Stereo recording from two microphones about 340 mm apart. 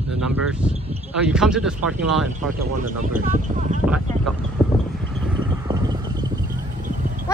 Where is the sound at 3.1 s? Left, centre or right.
Right.